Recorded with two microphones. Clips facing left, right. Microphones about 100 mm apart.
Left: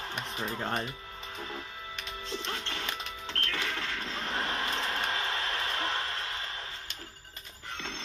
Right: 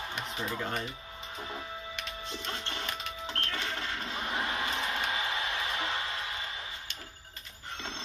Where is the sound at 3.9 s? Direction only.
10° right (ahead or behind).